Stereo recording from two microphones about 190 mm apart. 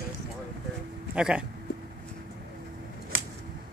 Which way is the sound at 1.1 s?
5° right (ahead or behind).